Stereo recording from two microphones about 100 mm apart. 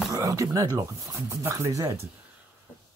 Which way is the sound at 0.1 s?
35° right (ahead or behind).